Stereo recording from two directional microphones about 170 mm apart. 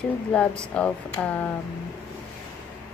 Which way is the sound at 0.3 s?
5° left (ahead or behind).